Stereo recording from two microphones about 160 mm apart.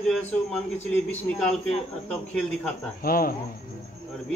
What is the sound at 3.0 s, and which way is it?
Speech, 65° left (ahead or behind).